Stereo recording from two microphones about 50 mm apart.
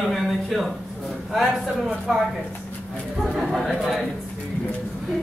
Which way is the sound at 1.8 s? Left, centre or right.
Centre.